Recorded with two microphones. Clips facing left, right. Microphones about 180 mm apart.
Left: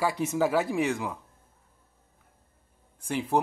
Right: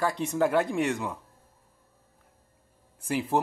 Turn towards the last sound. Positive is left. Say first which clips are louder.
# even
turn(degrees=0)  # may be behind; listen again after turning